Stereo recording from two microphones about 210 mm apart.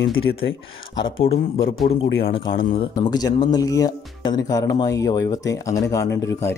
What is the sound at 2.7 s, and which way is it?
Speech, 20° left (ahead or behind).